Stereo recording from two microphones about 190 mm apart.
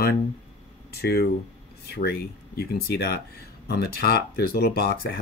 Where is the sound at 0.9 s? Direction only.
55° left (ahead or behind).